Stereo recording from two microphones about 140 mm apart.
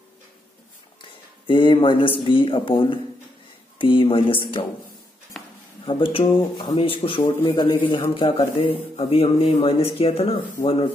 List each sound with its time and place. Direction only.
1.5 s speech: 35° left (ahead or behind)
5.4 s a sound: 5° left (ahead or behind)
5.9 s speech: 40° left (ahead or behind)
8.9 s speech: 45° left (ahead or behind)